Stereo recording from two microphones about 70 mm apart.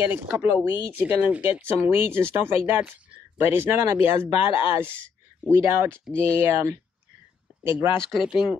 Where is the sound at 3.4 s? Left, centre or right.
Right.